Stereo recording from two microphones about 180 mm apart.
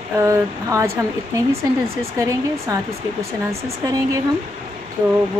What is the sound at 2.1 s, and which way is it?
A woman's voice, 15° right (ahead or behind).